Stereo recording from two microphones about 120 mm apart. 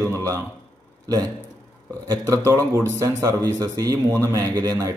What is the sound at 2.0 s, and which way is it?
Speech, 30° right (ahead or behind).